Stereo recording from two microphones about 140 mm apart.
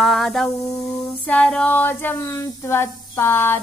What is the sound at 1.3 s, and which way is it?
Speech, 5° left (ahead or behind).